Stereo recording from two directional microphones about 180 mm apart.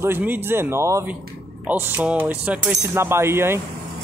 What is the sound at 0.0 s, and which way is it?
Speech, 10° right (ahead or behind).